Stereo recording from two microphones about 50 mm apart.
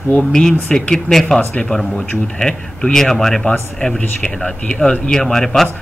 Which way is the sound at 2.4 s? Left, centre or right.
Centre.